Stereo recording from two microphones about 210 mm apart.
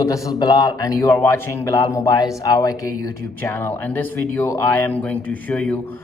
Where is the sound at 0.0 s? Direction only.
15° left (ahead or behind).